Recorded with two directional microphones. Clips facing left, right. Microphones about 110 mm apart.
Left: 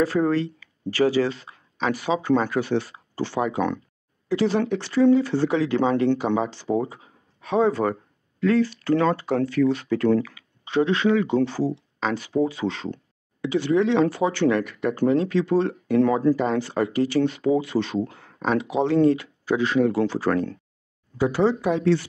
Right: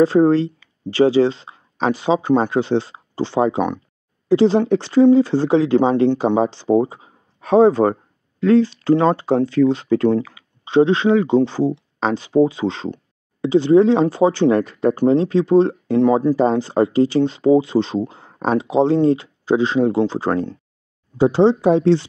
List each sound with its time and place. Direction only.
0.0 s speech: 25° right (ahead or behind)
7.3 s speech: 35° right (ahead or behind)